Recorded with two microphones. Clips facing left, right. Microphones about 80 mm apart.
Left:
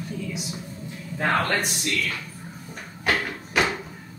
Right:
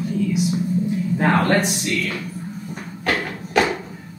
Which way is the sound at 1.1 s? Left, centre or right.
Right.